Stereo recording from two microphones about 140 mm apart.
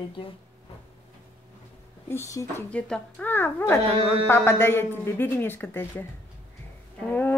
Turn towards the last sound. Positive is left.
turn(degrees=10)  # may be behind; listen again after turning